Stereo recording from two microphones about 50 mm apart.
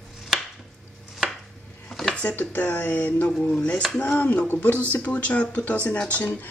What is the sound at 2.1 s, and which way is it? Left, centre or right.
Speech, left.